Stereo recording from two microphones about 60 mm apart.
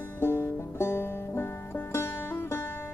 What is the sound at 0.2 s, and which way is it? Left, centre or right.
Music, left.